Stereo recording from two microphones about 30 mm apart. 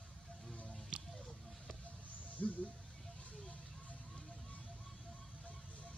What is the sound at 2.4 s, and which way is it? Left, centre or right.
Music, left.